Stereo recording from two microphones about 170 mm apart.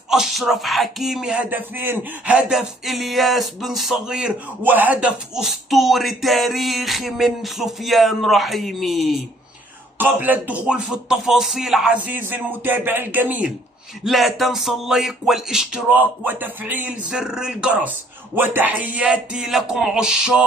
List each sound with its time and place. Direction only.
0.1 s speech: centre (ahead or behind)
9.9 s speech: 10° right (ahead or behind)